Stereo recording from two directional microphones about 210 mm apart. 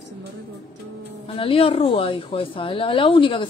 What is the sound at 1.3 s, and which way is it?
Speech, 25° left (ahead or behind).